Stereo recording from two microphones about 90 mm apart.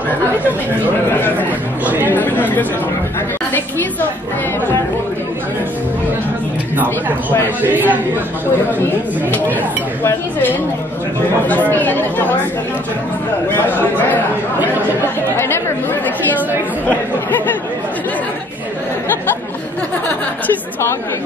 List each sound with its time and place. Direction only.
1.9 s speech: 20° right (ahead or behind)
2.1 s speech: 20° left (ahead or behind)
7.6 s speech: 20° right (ahead or behind)
11.7 s speech: 20° left (ahead or behind)
13.7 s speech: 20° left (ahead or behind)
15.3 s speech: 25° left (ahead or behind)